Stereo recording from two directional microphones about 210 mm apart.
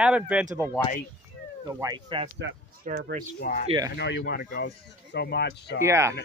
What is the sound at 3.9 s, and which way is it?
Speech, 55° left (ahead or behind).